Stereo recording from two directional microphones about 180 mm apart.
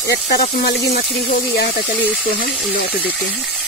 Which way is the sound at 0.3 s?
65° left (ahead or behind).